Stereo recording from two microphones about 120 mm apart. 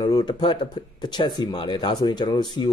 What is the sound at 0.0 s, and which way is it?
A man's voice, 35° left (ahead or behind).